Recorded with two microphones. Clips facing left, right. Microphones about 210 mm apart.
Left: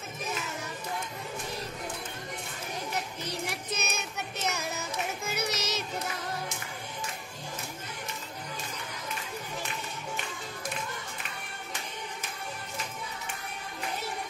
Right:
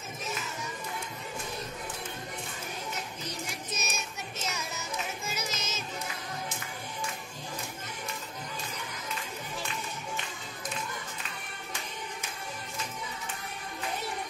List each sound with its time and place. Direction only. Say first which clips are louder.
3.4 s music: left 3 dB; 60° left (ahead or behind)